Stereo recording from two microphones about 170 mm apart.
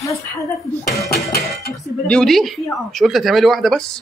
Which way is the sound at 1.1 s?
65° left (ahead or behind).